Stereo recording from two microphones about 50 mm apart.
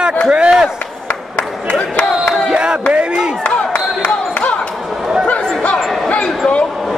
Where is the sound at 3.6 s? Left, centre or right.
Left.